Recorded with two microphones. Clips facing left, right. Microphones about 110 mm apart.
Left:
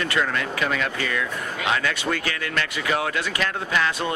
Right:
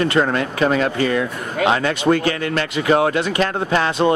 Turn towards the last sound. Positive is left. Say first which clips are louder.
# right 5 dB
turn(degrees=-35)  # may be behind; listen again after turning